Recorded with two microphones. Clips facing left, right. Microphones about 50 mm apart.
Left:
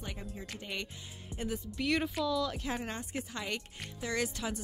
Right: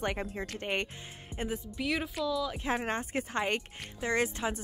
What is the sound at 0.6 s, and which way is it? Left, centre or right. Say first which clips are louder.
Speech: right 7 dB; right.